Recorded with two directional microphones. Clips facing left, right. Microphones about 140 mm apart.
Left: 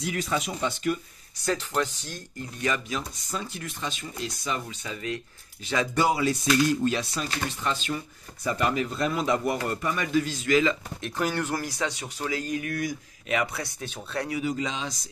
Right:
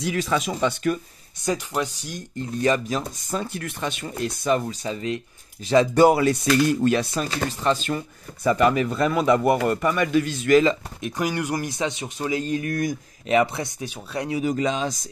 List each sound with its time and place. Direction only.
0.0 s speech: 90° right
1.4 s speech: 10° right (ahead or behind)
2.6 s speech: 35° right (ahead or behind)
3.0 s a man's voice: 50° right (ahead or behind)
4.6 s speech: 30° right (ahead or behind)
6.0 s a man's voice: 55° right (ahead or behind)
7.6 s speech: 45° right (ahead or behind)
8.5 s a man's voice: 70° right (ahead or behind)
11.0 s speech: 15° right (ahead or behind); by 12.9 s 40° right (ahead or behind)
13.3 s speech: 25° right (ahead or behind)
14.4 s speech: 50° right (ahead or behind)